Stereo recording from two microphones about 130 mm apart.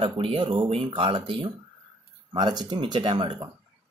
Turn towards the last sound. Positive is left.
turn(degrees=-35)  # may be behind; listen again after turning